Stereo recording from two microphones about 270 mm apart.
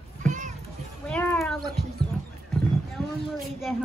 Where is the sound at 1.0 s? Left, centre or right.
Centre.